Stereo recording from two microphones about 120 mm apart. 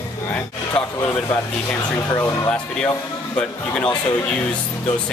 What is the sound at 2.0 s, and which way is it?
Speech, 25° left (ahead or behind).